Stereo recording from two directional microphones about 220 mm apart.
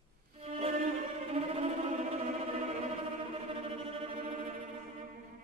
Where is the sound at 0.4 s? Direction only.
25° right (ahead or behind).